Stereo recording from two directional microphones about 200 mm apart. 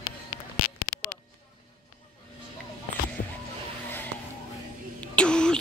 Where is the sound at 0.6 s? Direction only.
45° left (ahead or behind).